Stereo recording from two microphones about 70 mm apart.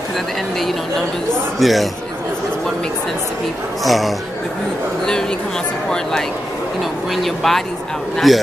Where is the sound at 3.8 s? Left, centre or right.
Centre.